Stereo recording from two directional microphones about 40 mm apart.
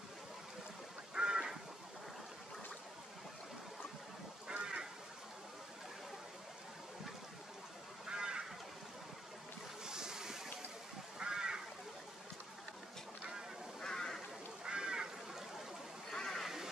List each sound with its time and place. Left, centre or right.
1.1 s duck: right
4.5 s duck: right
8.1 s goose: centre
9.8 s boat: centre
11.1 s a sound: centre
13.7 s a sound: centre
14.6 s goose: right
16.1 s a sound: centre
16.4 s duck: centre